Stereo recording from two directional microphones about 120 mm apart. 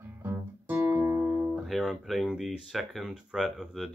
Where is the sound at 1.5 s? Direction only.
Centre (ahead or behind).